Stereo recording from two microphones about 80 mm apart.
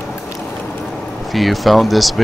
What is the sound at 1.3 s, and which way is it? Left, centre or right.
Speech, centre.